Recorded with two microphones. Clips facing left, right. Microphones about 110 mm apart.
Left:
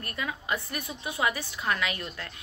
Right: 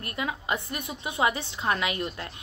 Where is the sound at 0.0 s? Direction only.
20° right (ahead or behind).